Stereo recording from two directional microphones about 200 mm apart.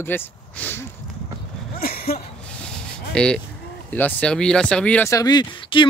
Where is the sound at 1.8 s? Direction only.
50° left (ahead or behind).